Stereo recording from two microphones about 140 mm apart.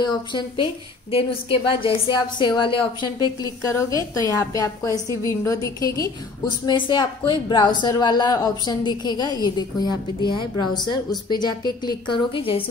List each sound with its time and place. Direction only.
0.0 s a woman's voice: 35° left (ahead or behind)
1.7 s a woman's voice: 35° left (ahead or behind)